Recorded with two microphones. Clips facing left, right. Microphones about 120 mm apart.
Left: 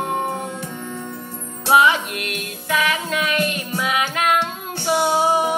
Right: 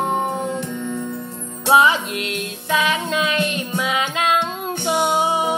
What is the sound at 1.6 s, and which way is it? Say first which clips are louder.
Music: even; 25° right (ahead or behind).